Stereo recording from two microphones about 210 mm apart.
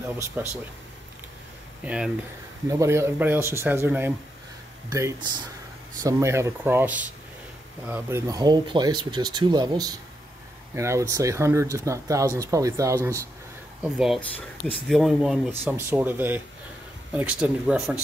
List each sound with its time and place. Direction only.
0.4 s speech: 10° right (ahead or behind)
2.7 s speech: 15° right (ahead or behind)
13.8 s speech: centre (ahead or behind)